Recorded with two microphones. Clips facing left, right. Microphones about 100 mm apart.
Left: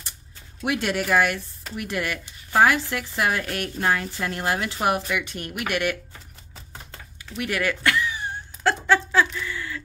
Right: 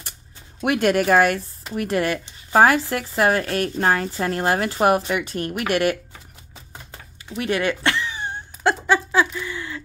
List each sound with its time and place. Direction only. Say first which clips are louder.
0.7 s speech: right 6 dB; 50° right (ahead or behind); by 5.9 s 35° right (ahead or behind)
6.7 s typing: right 1 dB; 10° right (ahead or behind)
7.3 s a sound: right 4 dB; 25° right (ahead or behind)